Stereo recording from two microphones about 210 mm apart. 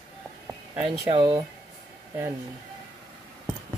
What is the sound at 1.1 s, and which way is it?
Speech, 20° right (ahead or behind).